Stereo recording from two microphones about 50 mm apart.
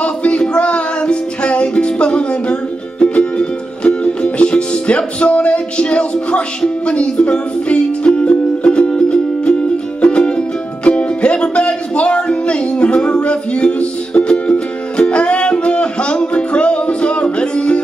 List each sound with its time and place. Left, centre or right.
0.0 s singing: left
0.6 s music: left